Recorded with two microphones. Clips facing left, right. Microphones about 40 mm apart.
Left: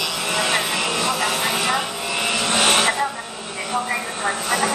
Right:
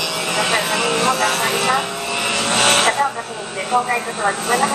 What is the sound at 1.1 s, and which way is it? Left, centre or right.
Vehicle, right.